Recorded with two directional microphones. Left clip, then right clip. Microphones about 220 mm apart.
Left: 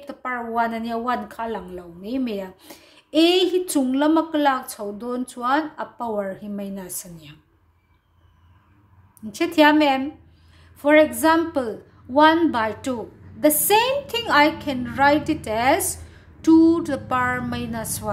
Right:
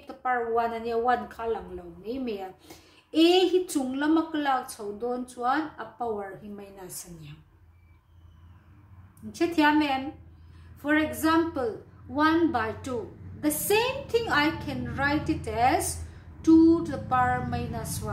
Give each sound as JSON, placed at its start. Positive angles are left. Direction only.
{"t": 0.0, "sound": "a woman's voice", "side_deg": 50}
{"t": 9.3, "sound": "a woman's voice", "side_deg": 50}